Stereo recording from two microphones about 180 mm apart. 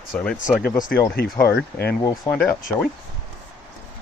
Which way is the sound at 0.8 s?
55° left (ahead or behind).